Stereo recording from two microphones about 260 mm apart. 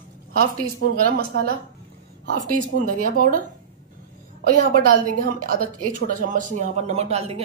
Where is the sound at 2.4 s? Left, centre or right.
Right.